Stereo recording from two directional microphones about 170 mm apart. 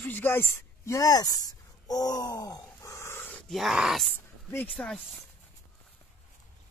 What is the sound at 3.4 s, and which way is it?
Speech, centre (ahead or behind).